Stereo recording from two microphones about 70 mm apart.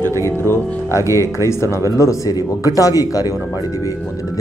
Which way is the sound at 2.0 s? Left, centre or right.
Left.